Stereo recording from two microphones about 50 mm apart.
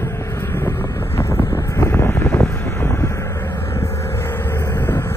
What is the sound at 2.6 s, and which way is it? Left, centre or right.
Wind noise, left.